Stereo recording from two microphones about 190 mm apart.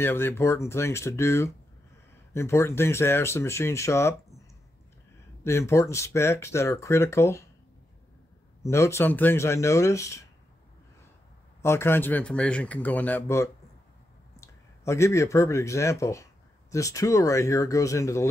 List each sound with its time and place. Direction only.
0.0 s speech: 10° left (ahead or behind)
5.4 s speech: 15° left (ahead or behind)
8.6 s speech: 15° left (ahead or behind)
11.6 s speech: 10° left (ahead or behind)